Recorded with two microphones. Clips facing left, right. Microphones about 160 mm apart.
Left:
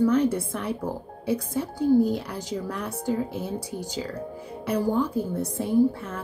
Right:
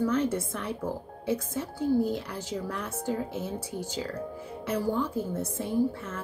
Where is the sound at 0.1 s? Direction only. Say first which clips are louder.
Left 5 dB; 10° left (ahead or behind).